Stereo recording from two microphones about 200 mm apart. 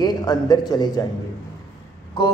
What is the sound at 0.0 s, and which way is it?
Speech, 20° left (ahead or behind).